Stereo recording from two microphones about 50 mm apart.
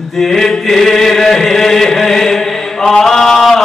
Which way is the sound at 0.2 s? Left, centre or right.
Centre.